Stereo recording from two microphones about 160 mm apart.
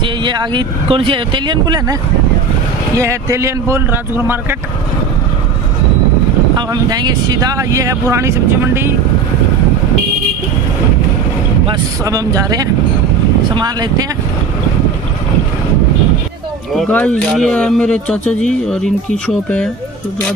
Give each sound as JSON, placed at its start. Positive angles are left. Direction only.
{"t": 0.0, "sound": "speech", "side_deg": -30}
{"t": 3.0, "sound": "speech", "side_deg": -20}
{"t": 6.5, "sound": "speech", "side_deg": -25}
{"t": 12.0, "sound": "speech", "side_deg": -20}
{"t": 16.7, "sound": "speech", "side_deg": 5}